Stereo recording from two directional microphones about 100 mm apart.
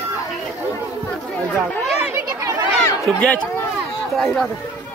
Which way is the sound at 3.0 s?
10° left (ahead or behind).